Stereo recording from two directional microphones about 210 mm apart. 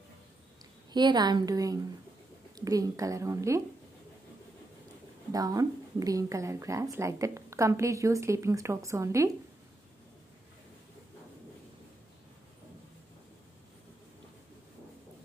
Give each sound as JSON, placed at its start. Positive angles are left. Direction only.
{"t": 0.9, "sound": "a woman's voice", "side_deg": -20}
{"t": 5.3, "sound": "speech", "side_deg": -15}